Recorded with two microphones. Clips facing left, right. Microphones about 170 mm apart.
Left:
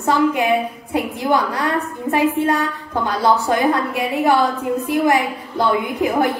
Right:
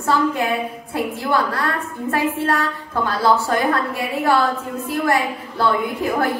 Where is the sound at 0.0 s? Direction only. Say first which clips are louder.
Left 3 dB; 20° left (ahead or behind).